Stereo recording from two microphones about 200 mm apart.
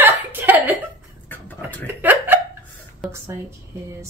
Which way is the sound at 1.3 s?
10° left (ahead or behind).